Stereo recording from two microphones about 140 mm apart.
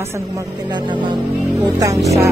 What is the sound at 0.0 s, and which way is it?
Speech, 20° right (ahead or behind).